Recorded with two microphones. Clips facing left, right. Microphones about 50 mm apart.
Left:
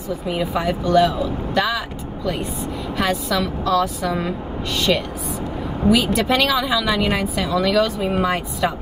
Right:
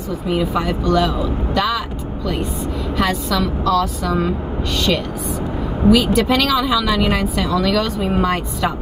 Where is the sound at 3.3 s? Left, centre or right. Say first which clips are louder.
Right 2 dB; centre.